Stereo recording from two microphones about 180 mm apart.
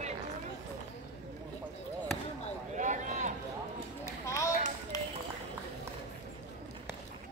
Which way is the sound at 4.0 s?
15° left (ahead or behind).